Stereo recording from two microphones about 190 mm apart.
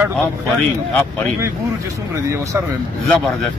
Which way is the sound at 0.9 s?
10° left (ahead or behind).